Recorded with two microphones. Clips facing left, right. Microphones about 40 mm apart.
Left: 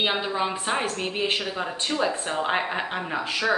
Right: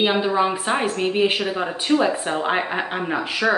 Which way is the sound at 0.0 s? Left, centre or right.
Centre.